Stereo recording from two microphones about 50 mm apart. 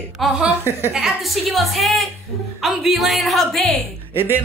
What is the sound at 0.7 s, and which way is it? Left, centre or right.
Speech, right.